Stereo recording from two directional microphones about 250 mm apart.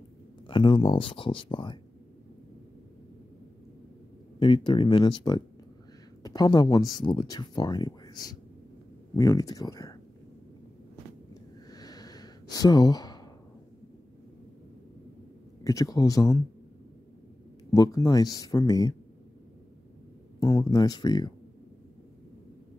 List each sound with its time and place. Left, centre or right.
0.5 s speech: centre
4.4 s speech: centre
11.7 s a sound: centre
15.6 s speech: centre
17.6 s speech: centre
20.3 s speech: centre